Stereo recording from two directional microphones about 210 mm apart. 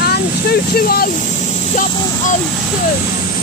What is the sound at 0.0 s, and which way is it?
Speech, 50° left (ahead or behind).